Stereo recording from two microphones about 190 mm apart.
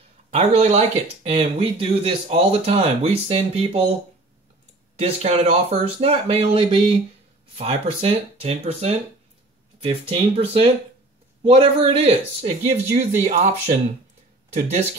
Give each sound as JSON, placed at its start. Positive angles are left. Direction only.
{"t": 0.3, "sound": "speech", "side_deg": -35}
{"t": 5.0, "sound": "speech", "side_deg": -35}